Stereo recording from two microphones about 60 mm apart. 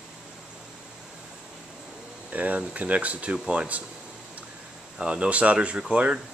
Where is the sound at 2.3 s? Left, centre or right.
Right.